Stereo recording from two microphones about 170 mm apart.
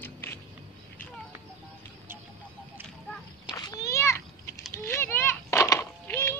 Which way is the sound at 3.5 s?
20° left (ahead or behind).